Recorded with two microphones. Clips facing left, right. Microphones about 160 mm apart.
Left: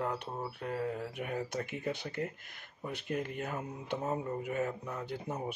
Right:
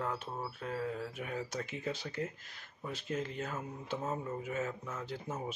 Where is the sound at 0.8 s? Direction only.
50° left (ahead or behind).